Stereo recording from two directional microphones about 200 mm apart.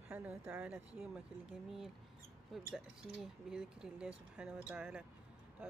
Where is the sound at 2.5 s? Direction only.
Centre (ahead or behind).